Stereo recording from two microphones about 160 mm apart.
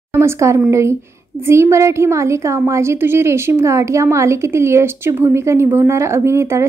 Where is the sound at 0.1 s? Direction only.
15° right (ahead or behind).